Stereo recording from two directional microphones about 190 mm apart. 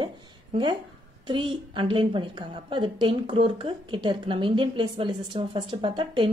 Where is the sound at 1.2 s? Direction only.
25° right (ahead or behind).